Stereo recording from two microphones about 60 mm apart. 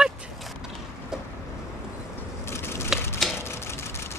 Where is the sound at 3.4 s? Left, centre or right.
Left.